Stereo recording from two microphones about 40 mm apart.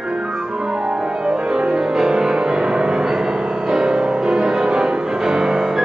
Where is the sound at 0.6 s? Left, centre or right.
Centre.